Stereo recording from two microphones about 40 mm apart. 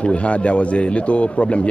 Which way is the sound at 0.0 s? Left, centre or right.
Left.